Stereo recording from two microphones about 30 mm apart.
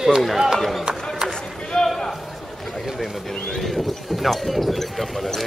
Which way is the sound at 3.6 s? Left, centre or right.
Centre.